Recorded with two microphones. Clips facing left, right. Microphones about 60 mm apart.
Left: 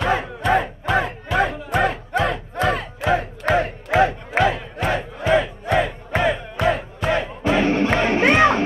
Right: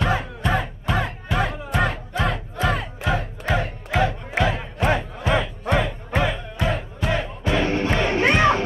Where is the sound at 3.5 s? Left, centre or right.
Left.